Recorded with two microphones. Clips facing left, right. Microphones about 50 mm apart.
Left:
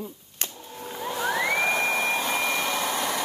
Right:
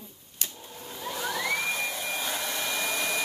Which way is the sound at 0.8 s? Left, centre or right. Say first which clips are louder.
Left 5 dB; left.